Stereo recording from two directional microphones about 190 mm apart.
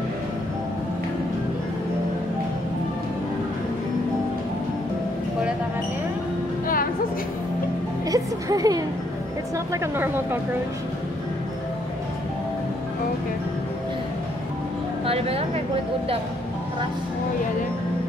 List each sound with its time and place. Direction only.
8.1 s a woman's voice: 20° right (ahead or behind)
15.0 s speech: 30° right (ahead or behind)